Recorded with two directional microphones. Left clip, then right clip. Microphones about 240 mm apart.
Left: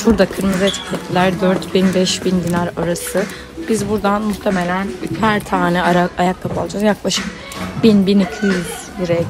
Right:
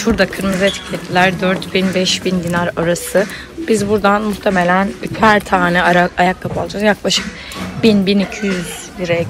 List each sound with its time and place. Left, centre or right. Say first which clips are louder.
0.0 s speech: even; centre